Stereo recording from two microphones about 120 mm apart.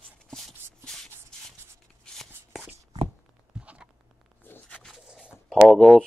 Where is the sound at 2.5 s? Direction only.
10° right (ahead or behind).